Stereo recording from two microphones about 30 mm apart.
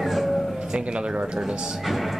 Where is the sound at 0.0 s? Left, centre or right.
Centre.